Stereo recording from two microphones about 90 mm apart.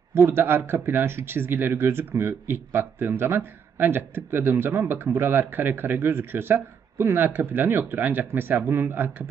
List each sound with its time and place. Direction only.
0.1 s speech: 25° right (ahead or behind)